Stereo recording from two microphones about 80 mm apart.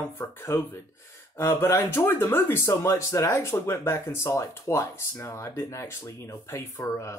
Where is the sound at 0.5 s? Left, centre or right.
Left.